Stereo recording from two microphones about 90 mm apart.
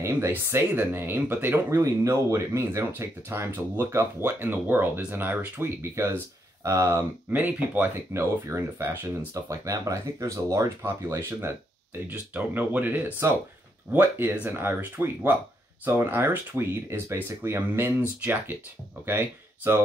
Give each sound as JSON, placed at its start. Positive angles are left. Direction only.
{"t": 0.3, "sound": "speech", "side_deg": -25}
{"t": 1.7, "sound": "speech", "side_deg": -35}
{"t": 7.2, "sound": "speech", "side_deg": -20}